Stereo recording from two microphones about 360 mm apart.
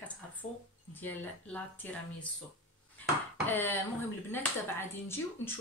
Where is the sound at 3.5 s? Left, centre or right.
Centre.